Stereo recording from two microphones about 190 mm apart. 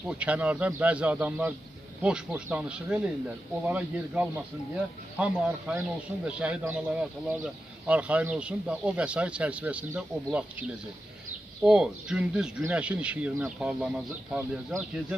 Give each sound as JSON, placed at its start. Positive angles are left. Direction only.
{"t": 0.1, "sound": "speech", "side_deg": -5}
{"t": 11.6, "sound": "speech", "side_deg": -5}